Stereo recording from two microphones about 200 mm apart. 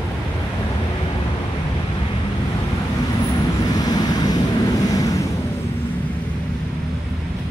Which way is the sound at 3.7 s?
20° left (ahead or behind).